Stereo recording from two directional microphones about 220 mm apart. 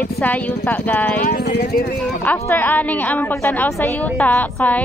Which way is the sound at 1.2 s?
45° left (ahead or behind).